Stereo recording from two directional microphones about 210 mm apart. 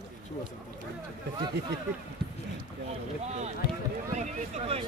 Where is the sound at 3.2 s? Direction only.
30° right (ahead or behind).